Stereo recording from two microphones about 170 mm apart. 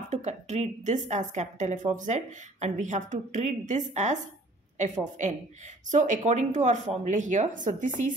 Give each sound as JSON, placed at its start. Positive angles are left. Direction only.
{"t": 0.1, "sound": "a woman's voice", "side_deg": -40}